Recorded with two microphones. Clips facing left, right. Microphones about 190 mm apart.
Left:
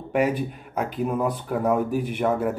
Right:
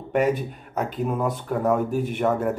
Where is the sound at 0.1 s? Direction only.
10° left (ahead or behind).